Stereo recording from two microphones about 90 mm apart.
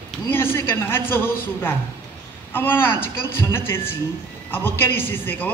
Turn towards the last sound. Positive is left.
turn(degrees=25)  # may be behind; listen again after turning